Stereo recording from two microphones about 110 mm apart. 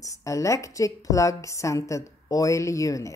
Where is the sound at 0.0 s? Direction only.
30° left (ahead or behind).